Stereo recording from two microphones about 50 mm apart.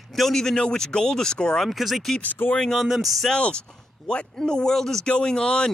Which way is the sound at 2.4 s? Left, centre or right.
Left.